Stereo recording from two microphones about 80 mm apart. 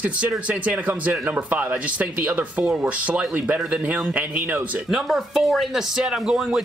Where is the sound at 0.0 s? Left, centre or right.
Centre.